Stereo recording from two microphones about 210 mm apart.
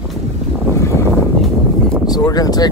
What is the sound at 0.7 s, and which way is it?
Boat, 15° left (ahead or behind).